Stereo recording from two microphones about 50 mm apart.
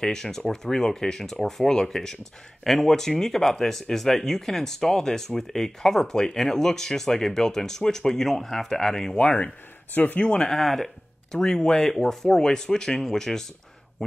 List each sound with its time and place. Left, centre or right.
0.0 s speech: centre
9.2 s speech: left
10.2 s speech: centre
10.5 s speech: centre